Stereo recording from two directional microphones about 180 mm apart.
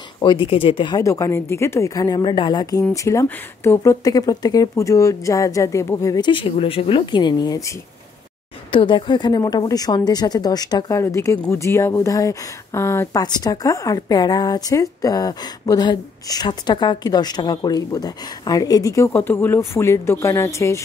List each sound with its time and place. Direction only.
0.2 s a woman's voice: 30° left (ahead or behind)
8.7 s a woman's voice: 25° left (ahead or behind)